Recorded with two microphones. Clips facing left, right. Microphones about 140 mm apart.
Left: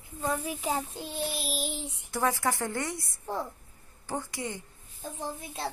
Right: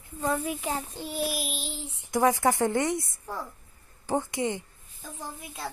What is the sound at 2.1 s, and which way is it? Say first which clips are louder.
Speech: right 6 dB; 15° right (ahead or behind).